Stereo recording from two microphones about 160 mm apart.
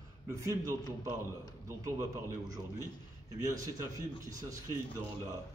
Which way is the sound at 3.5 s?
20° right (ahead or behind).